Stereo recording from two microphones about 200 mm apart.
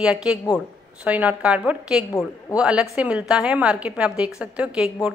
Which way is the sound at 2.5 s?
5° right (ahead or behind).